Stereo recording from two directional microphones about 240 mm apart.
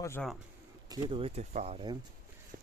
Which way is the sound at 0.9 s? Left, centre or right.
Right.